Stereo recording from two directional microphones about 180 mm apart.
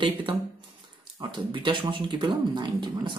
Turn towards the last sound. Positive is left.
turn(degrees=-25)  # may be behind; listen again after turning